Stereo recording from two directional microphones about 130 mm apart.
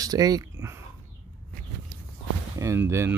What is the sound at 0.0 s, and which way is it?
Speech, 30° right (ahead or behind).